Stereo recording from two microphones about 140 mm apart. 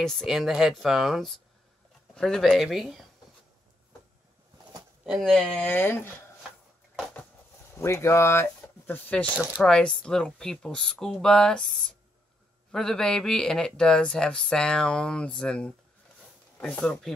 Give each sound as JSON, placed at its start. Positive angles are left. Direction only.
{"t": 0.0, "sound": "speech", "side_deg": 5}
{"t": 5.0, "sound": "speech", "side_deg": 0}
{"t": 7.7, "sound": "speech", "side_deg": 20}
{"t": 9.3, "sound": "speech", "side_deg": -10}
{"t": 9.6, "sound": "speech", "side_deg": 5}